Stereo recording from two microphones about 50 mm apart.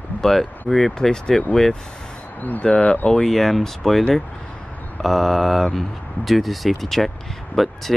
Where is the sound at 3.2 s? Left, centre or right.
Centre.